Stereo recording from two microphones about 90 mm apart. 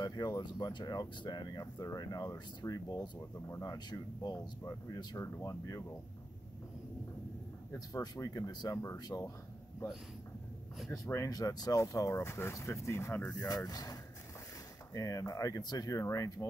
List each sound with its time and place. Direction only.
0.0 s speech: 45° left (ahead or behind)
3.4 s speech: 30° left (ahead or behind)
3.7 s speech: 50° left (ahead or behind)
4.6 s speech: 35° left (ahead or behind)
7.9 s speech: 40° left (ahead or behind)
10.9 s speech: 35° left (ahead or behind)
13.5 s speech: 40° left (ahead or behind)
15.0 s speech: 35° left (ahead or behind)